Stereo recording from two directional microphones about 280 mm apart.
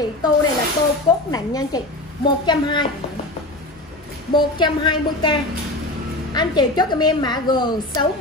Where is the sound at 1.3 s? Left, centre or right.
Centre.